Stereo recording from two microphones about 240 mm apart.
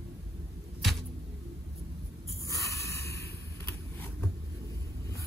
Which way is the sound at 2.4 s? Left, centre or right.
Centre.